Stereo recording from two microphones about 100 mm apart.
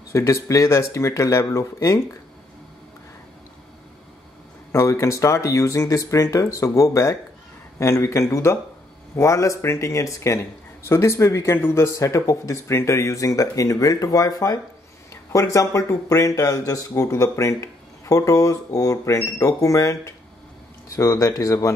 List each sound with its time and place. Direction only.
0.1 s speech: 30° left (ahead or behind)
4.7 s speech: 30° left (ahead or behind)